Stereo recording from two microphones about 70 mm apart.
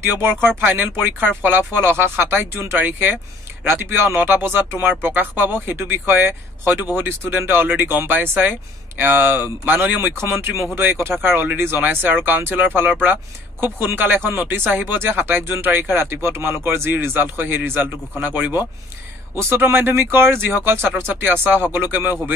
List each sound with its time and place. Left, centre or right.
0.0 s speech: right